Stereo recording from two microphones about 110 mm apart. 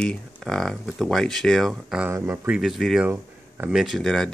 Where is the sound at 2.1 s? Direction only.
20° right (ahead or behind).